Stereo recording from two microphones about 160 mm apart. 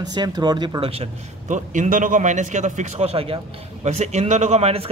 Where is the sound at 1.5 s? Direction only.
50° right (ahead or behind).